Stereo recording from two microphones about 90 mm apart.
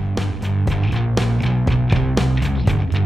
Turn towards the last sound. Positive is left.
turn(degrees=0)  # may be behind; listen again after turning